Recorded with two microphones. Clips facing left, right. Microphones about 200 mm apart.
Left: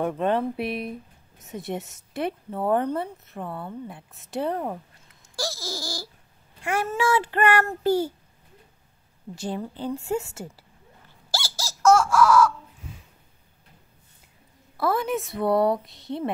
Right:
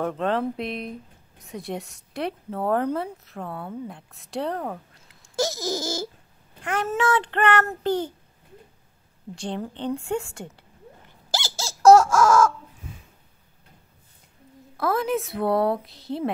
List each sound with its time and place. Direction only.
0.0 s a child's voice: 10° left (ahead or behind)
5.3 s babbling: 20° right (ahead or behind)
6.6 s a child's voice: 10° left (ahead or behind)
9.3 s speech: 5° left (ahead or behind)
11.2 s bird: 20° right (ahead or behind); by 12.5 s 45° right (ahead or behind)
14.8 s speech: centre (ahead or behind)